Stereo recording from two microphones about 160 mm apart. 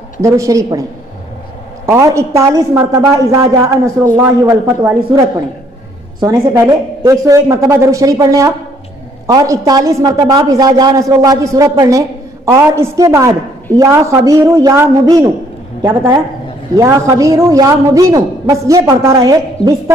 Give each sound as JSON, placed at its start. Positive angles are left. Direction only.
{"t": 0.2, "sound": "a man's voice", "side_deg": -20}
{"t": 1.9, "sound": "a woman's voice", "side_deg": -20}
{"t": 6.2, "sound": "a woman's voice", "side_deg": -20}